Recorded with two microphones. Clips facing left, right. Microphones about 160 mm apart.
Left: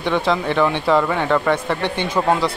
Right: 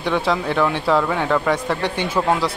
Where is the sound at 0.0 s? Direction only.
5° right (ahead or behind).